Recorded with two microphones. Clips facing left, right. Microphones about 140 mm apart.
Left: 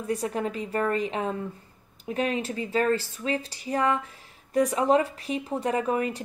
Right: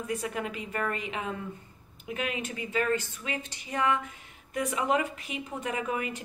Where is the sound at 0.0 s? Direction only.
35° left (ahead or behind).